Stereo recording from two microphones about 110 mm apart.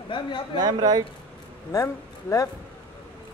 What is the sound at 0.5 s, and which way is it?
Speech, 40° right (ahead or behind).